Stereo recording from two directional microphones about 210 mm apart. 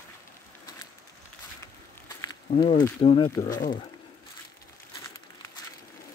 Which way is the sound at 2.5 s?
25° left (ahead or behind).